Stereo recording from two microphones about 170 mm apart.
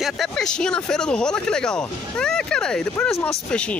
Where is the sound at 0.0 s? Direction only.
Centre (ahead or behind).